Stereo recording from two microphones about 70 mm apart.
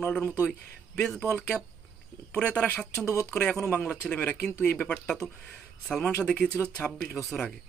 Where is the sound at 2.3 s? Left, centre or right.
Centre.